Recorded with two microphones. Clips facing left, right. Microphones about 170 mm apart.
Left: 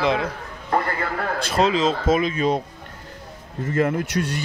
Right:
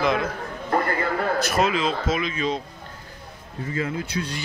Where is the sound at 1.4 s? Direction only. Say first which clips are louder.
Left 3 dB; 30° left (ahead or behind).